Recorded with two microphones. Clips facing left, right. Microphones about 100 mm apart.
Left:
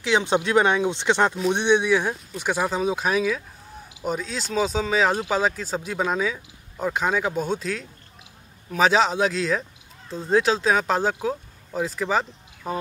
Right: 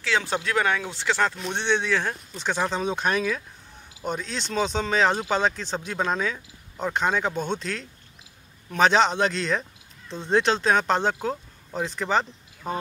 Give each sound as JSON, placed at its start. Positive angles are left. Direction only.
{"t": 0.0, "sound": "speech", "side_deg": 20}